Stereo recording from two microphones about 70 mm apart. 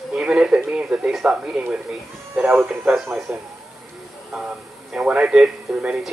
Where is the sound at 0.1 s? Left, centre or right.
Centre.